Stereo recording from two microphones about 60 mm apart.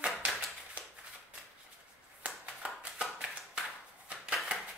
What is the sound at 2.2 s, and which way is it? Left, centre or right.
Clapping, centre.